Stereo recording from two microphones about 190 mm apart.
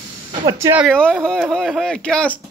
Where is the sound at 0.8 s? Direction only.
5° left (ahead or behind).